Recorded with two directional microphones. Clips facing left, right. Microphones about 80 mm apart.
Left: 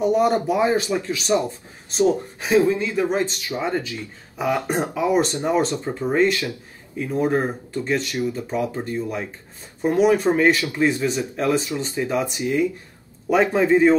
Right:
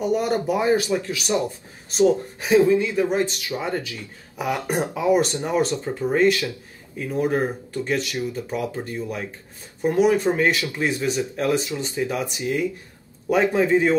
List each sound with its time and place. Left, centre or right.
0.0 s speech: left